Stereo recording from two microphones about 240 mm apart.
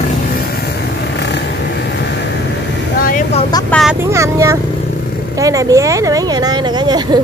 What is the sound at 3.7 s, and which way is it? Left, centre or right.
Vehicle, centre.